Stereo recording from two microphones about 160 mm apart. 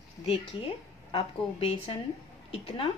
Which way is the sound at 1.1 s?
35° left (ahead or behind).